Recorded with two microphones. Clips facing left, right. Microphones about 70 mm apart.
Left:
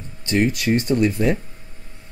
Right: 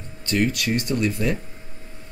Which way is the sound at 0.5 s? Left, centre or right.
Left.